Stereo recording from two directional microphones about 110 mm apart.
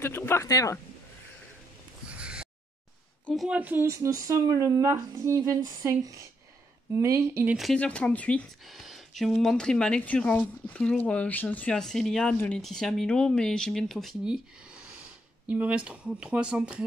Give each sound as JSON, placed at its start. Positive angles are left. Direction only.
{"t": 0.0, "sound": "speech", "side_deg": 20}
{"t": 2.0, "sound": "a sound", "side_deg": -10}
{"t": 3.4, "sound": "speech", "side_deg": -15}
{"t": 3.8, "sound": "speech", "side_deg": -30}
{"t": 7.7, "sound": "speech", "side_deg": 10}
{"t": 8.6, "sound": "speech", "side_deg": 0}
{"t": 15.4, "sound": "speech", "side_deg": -15}